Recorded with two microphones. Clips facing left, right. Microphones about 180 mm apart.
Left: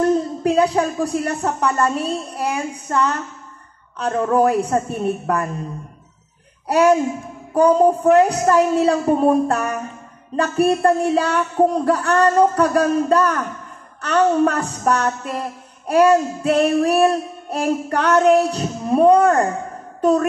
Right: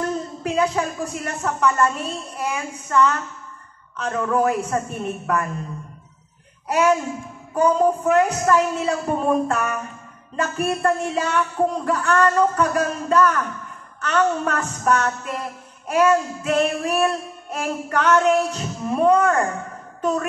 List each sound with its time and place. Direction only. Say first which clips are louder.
0.4 s music: left 5 dB; 35° left (ahead or behind)
6.7 s music: left 4 dB; 35° left (ahead or behind)
20.0 s a woman's voice: left 7 dB; 35° left (ahead or behind)